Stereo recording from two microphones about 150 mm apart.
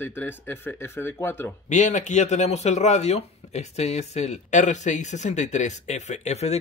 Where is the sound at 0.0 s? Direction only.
15° left (ahead or behind).